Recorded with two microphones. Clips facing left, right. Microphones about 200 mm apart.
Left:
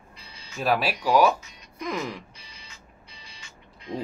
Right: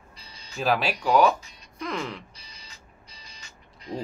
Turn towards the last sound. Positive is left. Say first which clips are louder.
# left 1 dB
turn(degrees=-40)  # may be behind; listen again after turning